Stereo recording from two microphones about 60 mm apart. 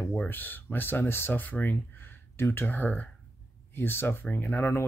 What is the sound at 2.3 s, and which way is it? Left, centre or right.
Speech, left.